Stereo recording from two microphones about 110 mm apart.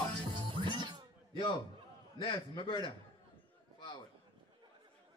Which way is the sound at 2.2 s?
45° left (ahead or behind).